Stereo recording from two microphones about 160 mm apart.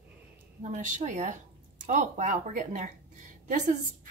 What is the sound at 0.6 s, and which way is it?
A woman's voice, 50° right (ahead or behind).